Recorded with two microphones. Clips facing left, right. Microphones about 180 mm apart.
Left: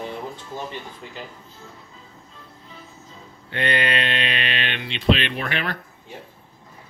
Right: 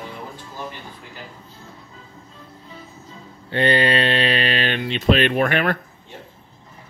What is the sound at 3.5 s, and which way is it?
Speech, 30° right (ahead or behind).